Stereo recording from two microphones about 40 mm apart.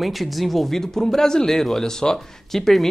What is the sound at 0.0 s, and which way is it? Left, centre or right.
Speech, centre.